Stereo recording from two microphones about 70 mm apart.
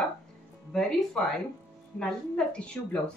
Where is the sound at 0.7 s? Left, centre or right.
Centre.